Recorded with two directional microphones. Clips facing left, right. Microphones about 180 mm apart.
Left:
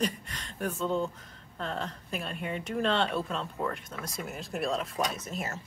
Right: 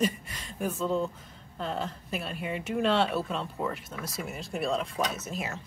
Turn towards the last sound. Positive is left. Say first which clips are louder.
# right 1 dB
turn(degrees=0)  # may be behind; listen again after turning